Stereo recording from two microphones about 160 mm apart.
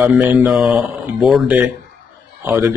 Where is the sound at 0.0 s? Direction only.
10° right (ahead or behind).